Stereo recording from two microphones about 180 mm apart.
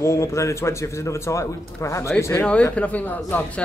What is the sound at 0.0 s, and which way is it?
Speech, 15° left (ahead or behind).